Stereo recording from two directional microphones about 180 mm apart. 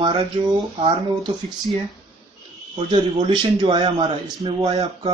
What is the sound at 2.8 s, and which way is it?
A man's voice, 25° right (ahead or behind).